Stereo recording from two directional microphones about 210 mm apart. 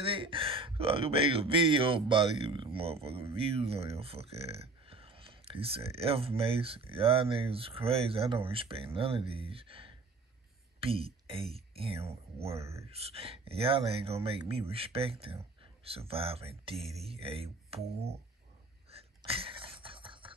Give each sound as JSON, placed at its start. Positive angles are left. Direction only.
{"t": 0.0, "sound": "speech", "side_deg": -25}
{"t": 12.5, "sound": "speech", "side_deg": -15}
{"t": 12.9, "sound": "speech", "side_deg": -30}
{"t": 16.7, "sound": "a sound", "side_deg": 0}
{"t": 17.0, "sound": "speech", "side_deg": -25}
{"t": 18.9, "sound": "a sound", "side_deg": -30}